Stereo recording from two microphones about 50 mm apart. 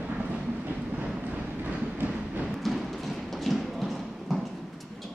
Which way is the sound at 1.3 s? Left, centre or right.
Right.